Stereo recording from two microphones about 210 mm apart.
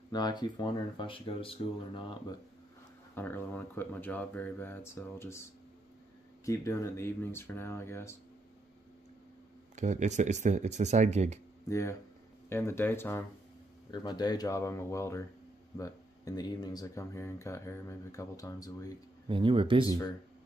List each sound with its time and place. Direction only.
0.1 s speech: 20° left (ahead or behind)
3.2 s speech: 10° left (ahead or behind)
9.8 s speech: 35° right (ahead or behind)
12.4 s speech: 10° left (ahead or behind)
19.2 s speech: 25° right (ahead or behind)